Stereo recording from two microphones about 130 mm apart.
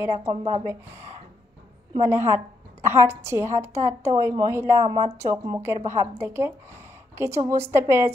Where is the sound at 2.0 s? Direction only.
20° right (ahead or behind).